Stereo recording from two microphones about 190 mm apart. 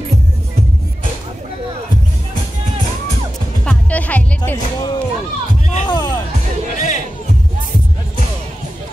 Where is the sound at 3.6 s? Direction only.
5° left (ahead or behind).